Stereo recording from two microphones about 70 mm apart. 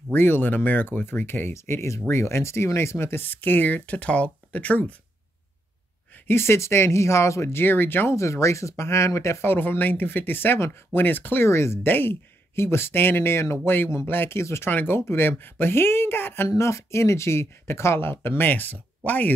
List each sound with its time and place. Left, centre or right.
0.1 s speech: left
6.2 s speech: left
8.1 s speech: left
16.4 s speech: left